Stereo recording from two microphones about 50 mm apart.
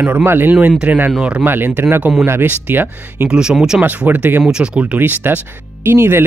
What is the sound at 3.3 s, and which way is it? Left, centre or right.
Speech, centre.